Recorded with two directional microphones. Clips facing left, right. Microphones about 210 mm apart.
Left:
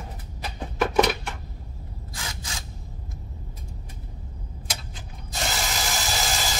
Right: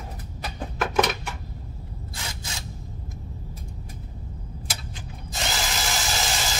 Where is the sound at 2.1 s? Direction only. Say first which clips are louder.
Left 1 dB; 25° right (ahead or behind).